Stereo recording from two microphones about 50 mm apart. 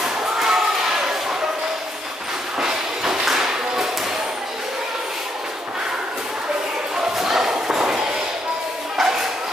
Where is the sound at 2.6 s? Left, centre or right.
Centre.